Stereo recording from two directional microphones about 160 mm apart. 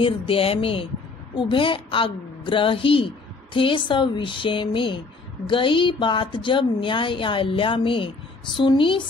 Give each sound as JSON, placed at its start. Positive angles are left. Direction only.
{"t": 0.0, "sound": "a woman's voice", "side_deg": 35}